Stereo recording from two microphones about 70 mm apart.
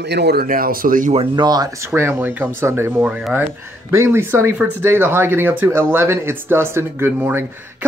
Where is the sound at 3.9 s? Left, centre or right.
Right.